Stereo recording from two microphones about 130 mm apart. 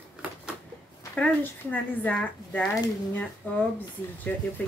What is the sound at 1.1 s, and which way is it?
A woman's voice, 15° left (ahead or behind).